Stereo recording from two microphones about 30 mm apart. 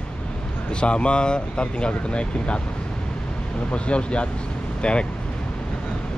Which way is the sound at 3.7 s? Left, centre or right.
Left.